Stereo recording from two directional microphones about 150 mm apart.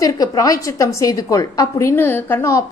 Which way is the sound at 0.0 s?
25° left (ahead or behind).